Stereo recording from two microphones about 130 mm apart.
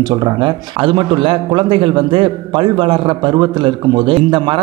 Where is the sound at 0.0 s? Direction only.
30° right (ahead or behind).